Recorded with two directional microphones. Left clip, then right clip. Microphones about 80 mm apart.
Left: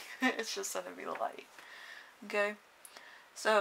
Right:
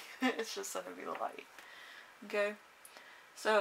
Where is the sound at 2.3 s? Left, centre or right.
Left.